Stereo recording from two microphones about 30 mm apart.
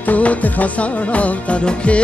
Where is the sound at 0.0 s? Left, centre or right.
Left.